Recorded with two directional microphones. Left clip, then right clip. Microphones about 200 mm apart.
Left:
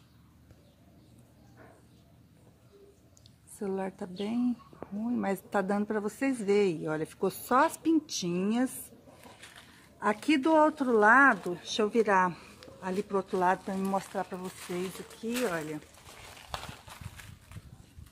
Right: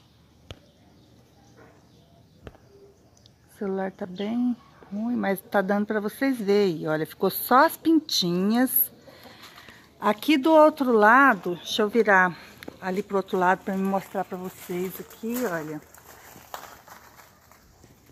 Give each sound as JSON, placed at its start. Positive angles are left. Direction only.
{"t": 3.5, "sound": "speech", "side_deg": -10}
{"t": 9.9, "sound": "speech", "side_deg": -25}
{"t": 11.6, "sound": "speech", "side_deg": -15}
{"t": 13.7, "sound": "speech", "side_deg": -35}
{"t": 15.3, "sound": "speech", "side_deg": -15}